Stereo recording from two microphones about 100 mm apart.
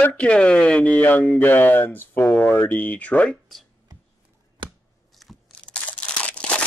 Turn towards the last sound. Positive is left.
turn(degrees=15)  # may be behind; listen again after turning